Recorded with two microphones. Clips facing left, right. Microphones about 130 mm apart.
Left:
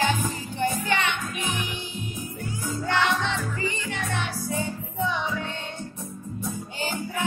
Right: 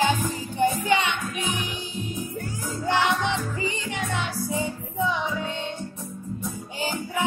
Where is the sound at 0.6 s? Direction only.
15° right (ahead or behind).